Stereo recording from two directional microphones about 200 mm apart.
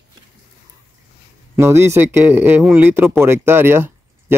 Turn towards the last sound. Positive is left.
turn(degrees=-10)  # may be behind; listen again after turning